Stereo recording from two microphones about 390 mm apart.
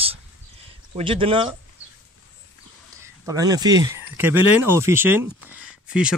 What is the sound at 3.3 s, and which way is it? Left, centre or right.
Speech, centre.